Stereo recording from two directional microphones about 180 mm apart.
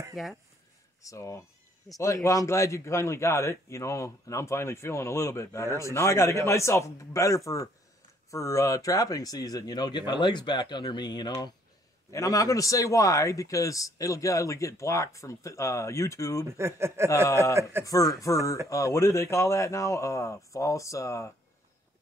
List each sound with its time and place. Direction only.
0.1 s speech: centre (ahead or behind)
1.0 s a man's voice: 15° left (ahead or behind)
16.4 s speech: 15° right (ahead or behind)
17.8 s a man's voice: 20° left (ahead or behind)